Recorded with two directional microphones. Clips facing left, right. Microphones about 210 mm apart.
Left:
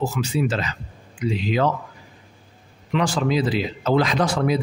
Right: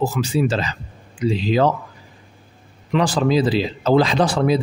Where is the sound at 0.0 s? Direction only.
35° right (ahead or behind).